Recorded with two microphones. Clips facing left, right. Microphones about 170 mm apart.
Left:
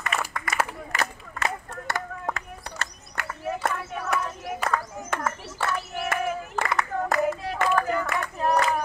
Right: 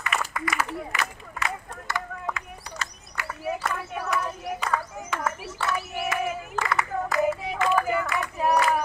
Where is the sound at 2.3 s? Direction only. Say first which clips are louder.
Left 1 dB; 55° left (ahead or behind).